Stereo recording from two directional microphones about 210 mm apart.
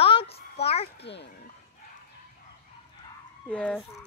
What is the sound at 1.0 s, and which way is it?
Speech, 55° left (ahead or behind).